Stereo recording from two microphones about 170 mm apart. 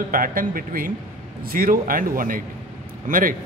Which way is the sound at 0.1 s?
55° right (ahead or behind).